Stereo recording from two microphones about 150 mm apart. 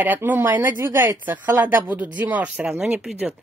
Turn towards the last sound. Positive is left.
turn(degrees=-5)  # may be behind; listen again after turning